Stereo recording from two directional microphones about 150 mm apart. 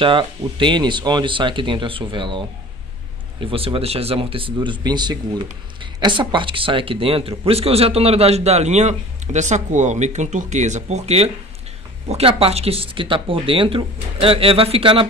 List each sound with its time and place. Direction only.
0.0 s speech: 35° right (ahead or behind)